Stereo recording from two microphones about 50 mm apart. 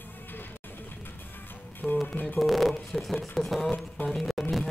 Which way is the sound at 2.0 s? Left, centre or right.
Left.